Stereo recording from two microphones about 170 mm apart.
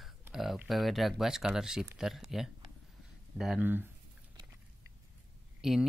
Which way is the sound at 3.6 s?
10° right (ahead or behind).